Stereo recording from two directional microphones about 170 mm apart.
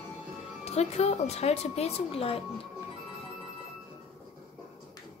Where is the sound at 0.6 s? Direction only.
40° left (ahead or behind).